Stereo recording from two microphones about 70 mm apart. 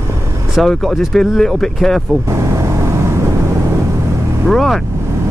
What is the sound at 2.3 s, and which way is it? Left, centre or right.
Vehicle, right.